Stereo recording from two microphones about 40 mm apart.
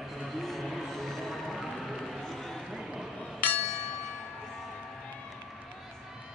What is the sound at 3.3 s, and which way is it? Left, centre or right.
Church bell, left.